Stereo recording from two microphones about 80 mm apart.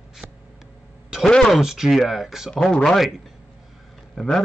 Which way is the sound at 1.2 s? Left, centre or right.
Centre.